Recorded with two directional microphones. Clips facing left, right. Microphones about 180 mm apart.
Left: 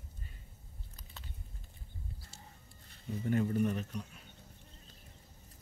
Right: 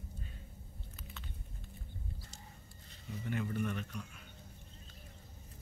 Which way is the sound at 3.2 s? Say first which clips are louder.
Left 6 dB; 40° left (ahead or behind).